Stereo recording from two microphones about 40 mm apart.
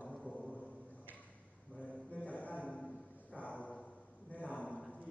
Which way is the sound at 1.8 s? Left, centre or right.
Left.